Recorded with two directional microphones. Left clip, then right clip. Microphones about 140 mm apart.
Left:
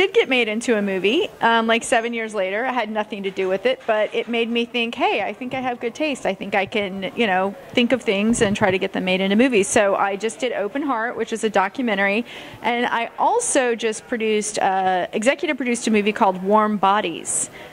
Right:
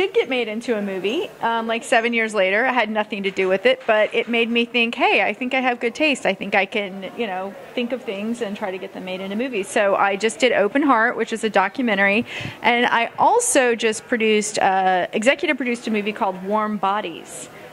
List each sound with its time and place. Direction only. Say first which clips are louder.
0.0 s a woman's voice: left 3 dB; 20° left (ahead or behind)
2.0 s a woman's voice: right 5 dB; 5° right (ahead or behind); by 6.9 s 10° left (ahead or behind)
7.2 s speech: left 7 dB; 40° left (ahead or behind)
9.8 s a woman's voice: right 5 dB; 10° left (ahead or behind)
11.4 s a woman's voice: right 1 dB; 10° left (ahead or behind)
15.7 s a woman's voice: left 4 dB; 25° left (ahead or behind)